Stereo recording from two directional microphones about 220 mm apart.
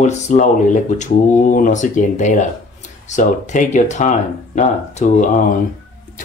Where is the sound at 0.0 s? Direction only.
35° left (ahead or behind).